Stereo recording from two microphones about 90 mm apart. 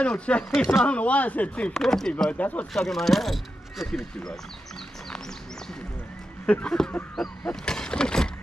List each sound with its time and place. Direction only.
0.0 s speech: 10° left (ahead or behind)
2.3 s speech: 15° left (ahead or behind)
2.7 s speech: 5° left (ahead or behind)
6.4 s speech: 10° left (ahead or behind)